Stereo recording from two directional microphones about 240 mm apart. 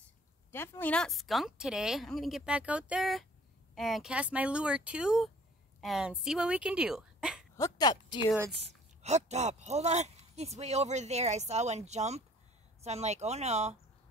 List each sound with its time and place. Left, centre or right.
0.5 s speech: centre
7.5 s speech: centre
8.5 s speech: right